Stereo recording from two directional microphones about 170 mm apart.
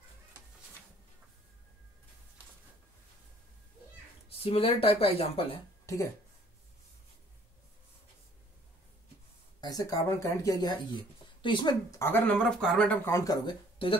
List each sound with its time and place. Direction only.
4.3 s speech: 35° left (ahead or behind)
5.9 s speech: 20° left (ahead or behind)
9.6 s speech: 20° left (ahead or behind)
13.1 s speech: 20° left (ahead or behind)